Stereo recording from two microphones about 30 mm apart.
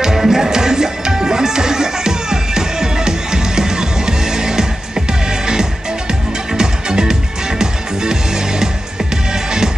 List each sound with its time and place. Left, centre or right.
0.0 s music: centre
6.5 s music: right